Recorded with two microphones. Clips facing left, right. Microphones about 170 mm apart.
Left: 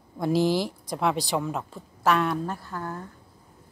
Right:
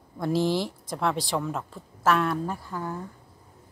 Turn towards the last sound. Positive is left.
turn(degrees=-5)  # may be behind; listen again after turning